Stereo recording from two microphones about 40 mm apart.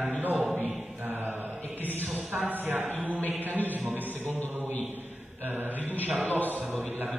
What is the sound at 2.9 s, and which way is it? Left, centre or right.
Speech, right.